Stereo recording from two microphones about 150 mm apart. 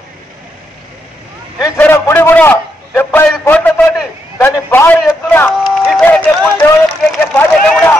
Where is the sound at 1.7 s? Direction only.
15° left (ahead or behind).